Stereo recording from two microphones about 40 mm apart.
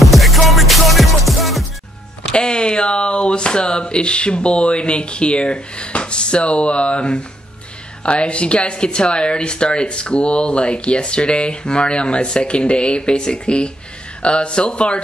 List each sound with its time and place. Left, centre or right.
0.0 s music: centre
2.3 s speech: left